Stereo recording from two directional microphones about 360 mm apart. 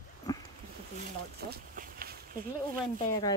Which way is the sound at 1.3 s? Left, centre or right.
Right.